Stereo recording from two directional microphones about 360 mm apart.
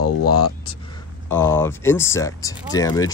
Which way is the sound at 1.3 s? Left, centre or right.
Centre.